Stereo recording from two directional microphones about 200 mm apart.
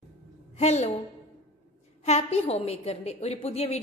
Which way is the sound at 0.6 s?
35° left (ahead or behind).